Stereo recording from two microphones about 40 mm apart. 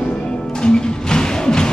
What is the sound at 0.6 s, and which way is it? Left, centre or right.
Music, centre.